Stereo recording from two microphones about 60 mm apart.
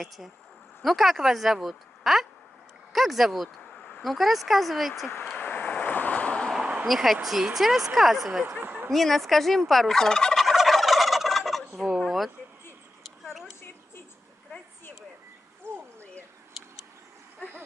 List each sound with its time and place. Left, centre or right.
0.8 s fowl: centre
2.9 s speech: centre
4.0 s fowl: centre
5.4 s vehicle: left
6.9 s fowl: centre
8.5 s a sound: right
8.9 s fowl: centre
10.3 s fowl: centre
12.0 s a sound: centre